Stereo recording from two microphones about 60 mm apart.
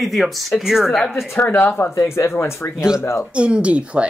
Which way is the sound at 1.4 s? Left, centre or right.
Left.